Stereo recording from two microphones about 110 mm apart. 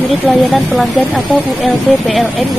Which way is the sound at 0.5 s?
Centre (ahead or behind).